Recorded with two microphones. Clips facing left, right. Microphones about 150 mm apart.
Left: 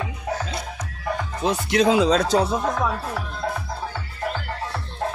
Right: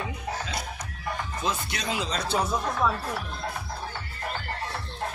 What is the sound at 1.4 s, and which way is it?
Speech, 75° left (ahead or behind).